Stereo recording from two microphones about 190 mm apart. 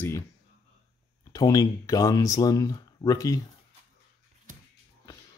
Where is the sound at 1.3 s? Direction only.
20° left (ahead or behind).